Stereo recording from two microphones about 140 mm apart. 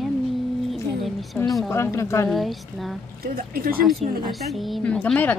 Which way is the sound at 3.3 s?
90° right.